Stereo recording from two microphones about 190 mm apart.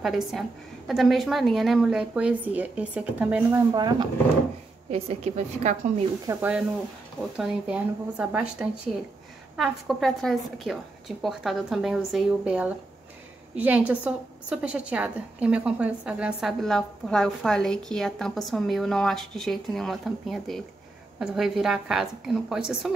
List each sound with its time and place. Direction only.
0.0 s a woman's voice: centre (ahead or behind)
3.7 s speech: 20° right (ahead or behind)
4.9 s a woman's voice: 35° right (ahead or behind)
6.3 s speech: 15° right (ahead or behind)
7.3 s a woman's voice: 5° right (ahead or behind)